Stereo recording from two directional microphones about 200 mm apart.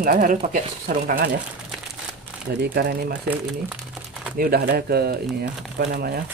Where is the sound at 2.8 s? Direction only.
55° right (ahead or behind).